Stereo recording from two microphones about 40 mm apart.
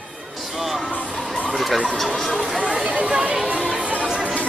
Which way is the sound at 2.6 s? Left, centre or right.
Right.